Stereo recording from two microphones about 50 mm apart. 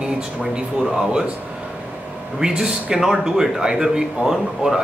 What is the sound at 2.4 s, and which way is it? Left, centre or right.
Speech, centre.